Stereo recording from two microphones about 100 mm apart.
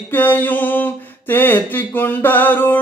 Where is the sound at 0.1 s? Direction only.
20° left (ahead or behind).